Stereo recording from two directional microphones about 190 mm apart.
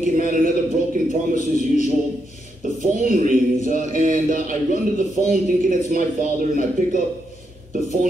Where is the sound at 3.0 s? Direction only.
45° right (ahead or behind).